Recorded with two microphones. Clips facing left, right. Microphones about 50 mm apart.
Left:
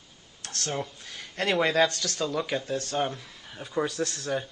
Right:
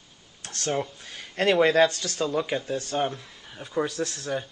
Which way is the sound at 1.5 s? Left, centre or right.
Centre.